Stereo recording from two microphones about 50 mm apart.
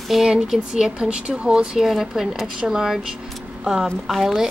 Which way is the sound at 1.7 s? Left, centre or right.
Centre.